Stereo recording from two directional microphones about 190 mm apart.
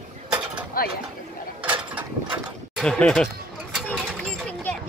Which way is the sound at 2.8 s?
5° left (ahead or behind).